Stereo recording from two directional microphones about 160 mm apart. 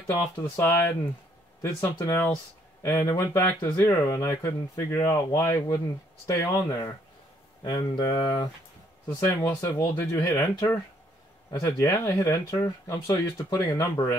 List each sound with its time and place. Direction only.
0.0 s speech: 15° left (ahead or behind); by 8.5 s 30° left (ahead or behind)
9.2 s speech: 15° left (ahead or behind)